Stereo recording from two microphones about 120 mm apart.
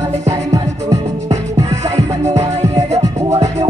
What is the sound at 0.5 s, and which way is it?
Music, 30° right (ahead or behind).